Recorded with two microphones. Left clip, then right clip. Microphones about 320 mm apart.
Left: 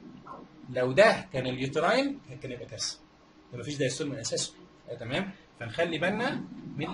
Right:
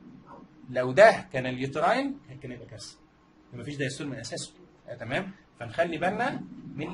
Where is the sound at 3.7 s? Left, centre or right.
Right.